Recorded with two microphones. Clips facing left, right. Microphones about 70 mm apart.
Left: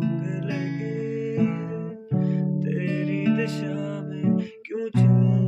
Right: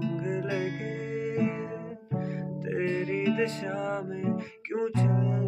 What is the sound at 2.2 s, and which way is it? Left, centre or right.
Music, right.